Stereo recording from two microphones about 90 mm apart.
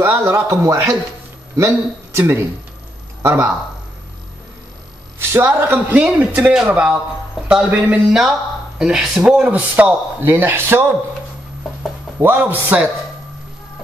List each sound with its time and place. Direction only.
0.0 s a man's voice: 30° right (ahead or behind)
2.1 s a man's voice: 30° right (ahead or behind)
5.3 s a man's voice: 25° right (ahead or behind)
12.2 s a man's voice: 25° right (ahead or behind)